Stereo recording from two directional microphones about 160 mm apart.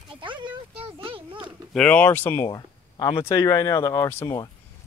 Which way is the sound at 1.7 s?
10° left (ahead or behind).